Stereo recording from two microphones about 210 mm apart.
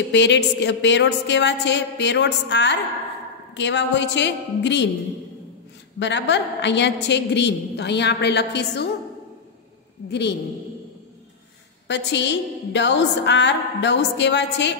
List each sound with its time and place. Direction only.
0.1 s a woman's voice: 55° left (ahead or behind)
5.9 s a woman's voice: 55° left (ahead or behind)
11.9 s a woman's voice: 55° left (ahead or behind)